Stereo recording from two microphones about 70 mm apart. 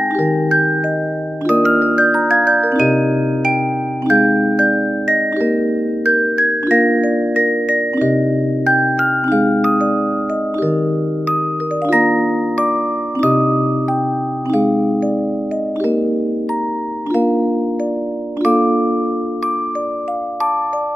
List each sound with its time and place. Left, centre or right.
1.6 s music: centre
2.4 s marimba: centre
2.8 s music: centre
4.1 s music: centre
8.7 s music: centre
9.7 s music: centre
11.9 s music: centre
13.4 s music: centre
18.6 s music: centre